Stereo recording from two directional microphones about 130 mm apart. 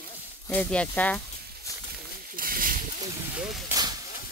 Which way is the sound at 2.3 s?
90° right.